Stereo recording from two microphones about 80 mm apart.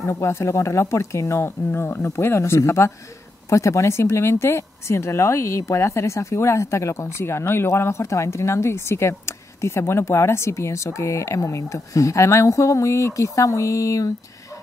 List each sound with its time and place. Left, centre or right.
0.0 s speech: left